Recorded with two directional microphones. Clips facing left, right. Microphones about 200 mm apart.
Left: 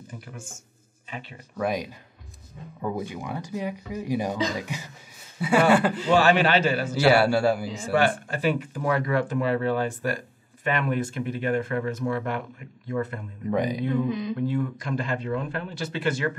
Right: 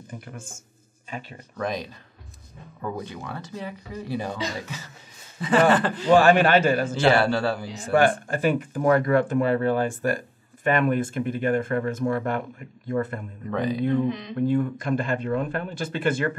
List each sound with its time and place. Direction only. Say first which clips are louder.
1.1 s speech: right 2 dB; 45° right (ahead or behind)
1.6 s speech: left 2 dB; 10° left (ahead or behind)
6.1 s speech: right 4 dB; 50° right (ahead or behind)
7.0 s speech: left 3 dB; 10° left (ahead or behind)
7.9 s speech: right 3 dB; 50° right (ahead or behind)
13.5 s speech: even; 15° left (ahead or behind)
14.4 s speech: right 4 dB; 50° right (ahead or behind)